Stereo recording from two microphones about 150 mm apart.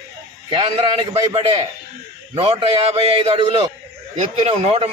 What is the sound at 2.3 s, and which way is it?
Speech, 40° right (ahead or behind).